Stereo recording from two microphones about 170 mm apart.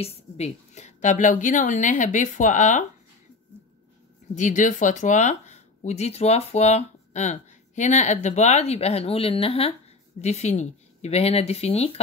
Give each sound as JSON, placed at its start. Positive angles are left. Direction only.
{"t": 0.0, "sound": "a woman's voice", "side_deg": 40}
{"t": 4.4, "sound": "speech", "side_deg": 45}